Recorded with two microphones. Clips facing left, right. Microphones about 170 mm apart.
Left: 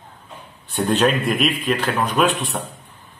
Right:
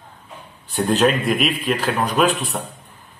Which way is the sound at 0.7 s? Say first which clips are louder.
Right 1 dB; centre (ahead or behind).